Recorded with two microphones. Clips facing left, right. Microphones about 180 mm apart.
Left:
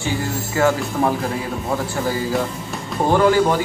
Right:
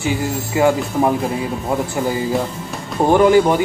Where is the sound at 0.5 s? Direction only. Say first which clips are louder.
Right 3 dB; 20° right (ahead or behind).